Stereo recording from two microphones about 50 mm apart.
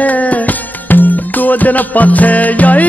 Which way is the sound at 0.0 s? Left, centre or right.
Left.